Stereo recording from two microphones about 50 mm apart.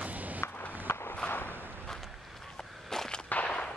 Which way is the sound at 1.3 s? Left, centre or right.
Left.